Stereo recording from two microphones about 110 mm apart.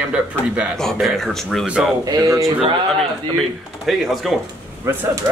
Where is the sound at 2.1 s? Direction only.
30° right (ahead or behind).